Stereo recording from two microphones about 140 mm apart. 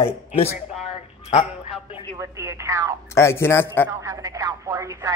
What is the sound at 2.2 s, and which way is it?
Speech, 20° right (ahead or behind).